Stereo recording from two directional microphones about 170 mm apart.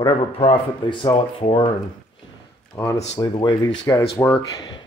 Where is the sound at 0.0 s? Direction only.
30° left (ahead or behind).